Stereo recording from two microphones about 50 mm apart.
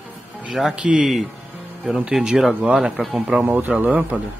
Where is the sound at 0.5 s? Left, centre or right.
Centre.